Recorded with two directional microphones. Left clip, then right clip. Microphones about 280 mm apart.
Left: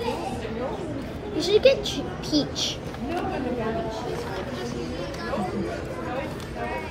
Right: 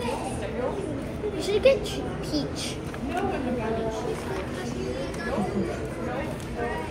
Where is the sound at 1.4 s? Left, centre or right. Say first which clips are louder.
Left 3 dB; left.